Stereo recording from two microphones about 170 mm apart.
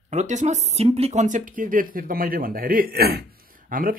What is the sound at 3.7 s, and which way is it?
Speech, 55° right (ahead or behind).